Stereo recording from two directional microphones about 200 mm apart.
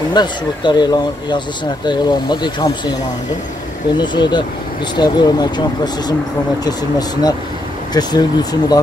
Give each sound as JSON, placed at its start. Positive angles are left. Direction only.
{"t": 0.1, "sound": "speech", "side_deg": 20}
{"t": 4.0, "sound": "speech", "side_deg": 20}